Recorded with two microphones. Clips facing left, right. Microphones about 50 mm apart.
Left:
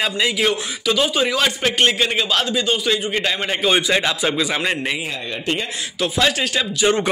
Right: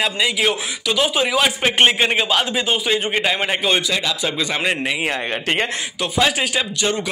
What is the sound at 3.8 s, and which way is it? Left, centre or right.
Speech, left.